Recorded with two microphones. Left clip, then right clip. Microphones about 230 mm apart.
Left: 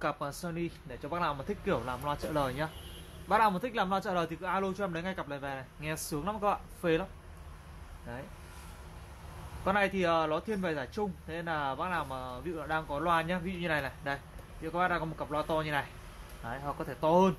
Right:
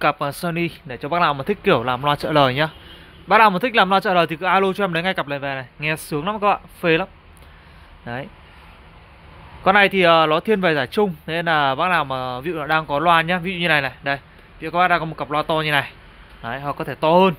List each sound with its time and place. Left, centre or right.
0.0 s speech: right
9.7 s speech: right